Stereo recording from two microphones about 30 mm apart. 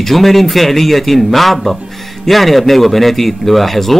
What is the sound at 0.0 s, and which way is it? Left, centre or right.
A man's voice, centre.